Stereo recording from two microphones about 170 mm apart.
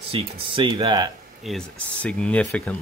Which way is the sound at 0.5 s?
30° right (ahead or behind).